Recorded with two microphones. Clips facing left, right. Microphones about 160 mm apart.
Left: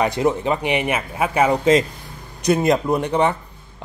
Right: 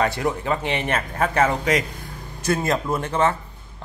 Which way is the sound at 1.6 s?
25° left (ahead or behind).